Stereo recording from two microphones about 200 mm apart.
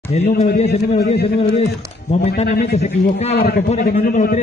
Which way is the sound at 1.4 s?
35° left (ahead or behind).